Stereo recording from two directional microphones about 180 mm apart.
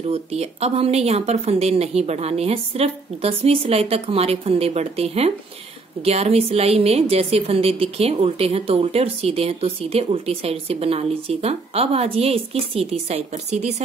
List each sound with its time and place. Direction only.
0.1 s a woman's voice: 35° right (ahead or behind)